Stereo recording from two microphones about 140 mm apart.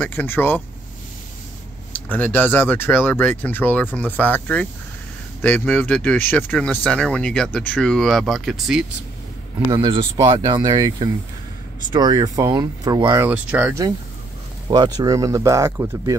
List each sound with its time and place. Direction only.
0.0 s speech: 10° left (ahead or behind)
2.0 s speech: 10° left (ahead or behind)
9.7 s speech: 30° right (ahead or behind)
13.2 s speech: 10° right (ahead or behind)
14.7 s speech: 30° right (ahead or behind)